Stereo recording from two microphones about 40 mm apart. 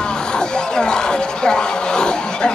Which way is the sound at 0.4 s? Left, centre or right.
Left.